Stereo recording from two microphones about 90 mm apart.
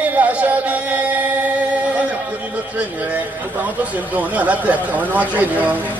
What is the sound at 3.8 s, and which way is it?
Speech, 15° right (ahead or behind).